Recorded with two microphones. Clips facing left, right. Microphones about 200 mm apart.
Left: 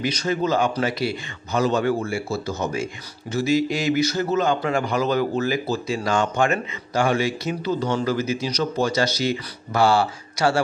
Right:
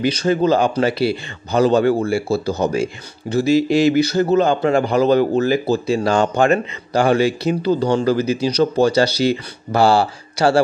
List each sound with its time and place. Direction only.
0.0 s speech: 30° right (ahead or behind)